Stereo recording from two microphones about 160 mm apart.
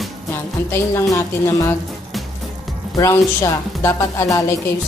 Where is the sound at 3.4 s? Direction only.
20° left (ahead or behind).